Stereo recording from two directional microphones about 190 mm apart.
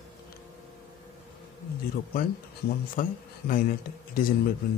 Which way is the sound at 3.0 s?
45° left (ahead or behind).